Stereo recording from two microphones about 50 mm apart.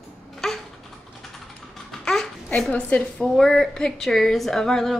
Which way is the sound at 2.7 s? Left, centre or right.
Left.